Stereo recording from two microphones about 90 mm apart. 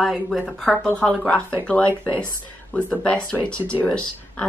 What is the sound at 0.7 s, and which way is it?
Speech, 10° left (ahead or behind).